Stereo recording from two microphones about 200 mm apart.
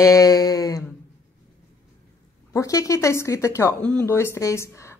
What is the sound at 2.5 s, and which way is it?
A woman's voice, 15° left (ahead or behind).